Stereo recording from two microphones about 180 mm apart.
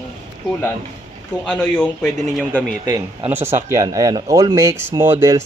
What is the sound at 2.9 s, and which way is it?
Speech, 10° right (ahead or behind).